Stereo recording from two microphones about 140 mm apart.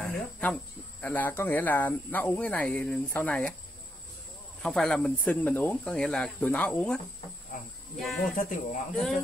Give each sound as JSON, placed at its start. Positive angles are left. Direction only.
{"t": 0.0, "sound": "cricket", "side_deg": 10}
{"t": 1.0, "sound": "speech", "side_deg": 15}
{"t": 4.6, "sound": "speech", "side_deg": 5}
{"t": 8.0, "sound": "speech", "side_deg": 0}
{"t": 8.4, "sound": "speech", "side_deg": 70}